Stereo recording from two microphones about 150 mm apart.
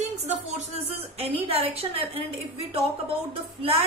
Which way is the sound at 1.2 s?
40° right (ahead or behind).